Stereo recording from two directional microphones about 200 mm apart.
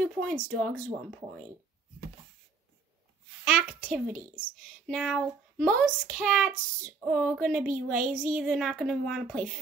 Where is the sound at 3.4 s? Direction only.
Centre (ahead or behind).